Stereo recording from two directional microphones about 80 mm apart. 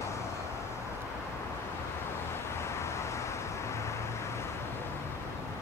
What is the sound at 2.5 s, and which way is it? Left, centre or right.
Vehicle, left.